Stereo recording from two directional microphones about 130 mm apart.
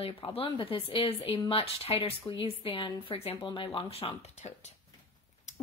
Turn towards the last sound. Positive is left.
turn(degrees=50)  # may be behind; listen again after turning